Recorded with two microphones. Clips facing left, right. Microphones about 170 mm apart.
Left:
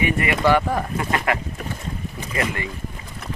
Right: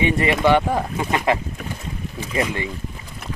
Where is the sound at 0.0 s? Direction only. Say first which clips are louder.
Right 2 dB; 25° right (ahead or behind).